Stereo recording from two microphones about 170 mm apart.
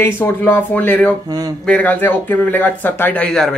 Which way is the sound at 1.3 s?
25° right (ahead or behind).